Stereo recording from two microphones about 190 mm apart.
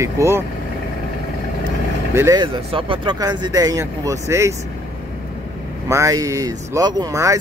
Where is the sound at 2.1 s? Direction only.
20° right (ahead or behind).